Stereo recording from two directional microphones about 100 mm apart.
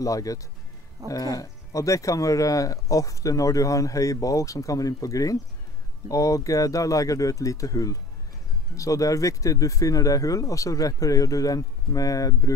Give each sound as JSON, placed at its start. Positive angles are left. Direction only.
{"t": 0.0, "sound": "speech", "side_deg": 35}